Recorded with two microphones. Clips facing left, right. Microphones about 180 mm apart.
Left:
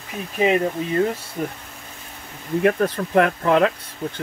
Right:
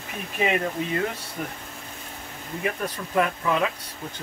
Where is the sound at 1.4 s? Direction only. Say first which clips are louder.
Left 5 dB; 35° left (ahead or behind).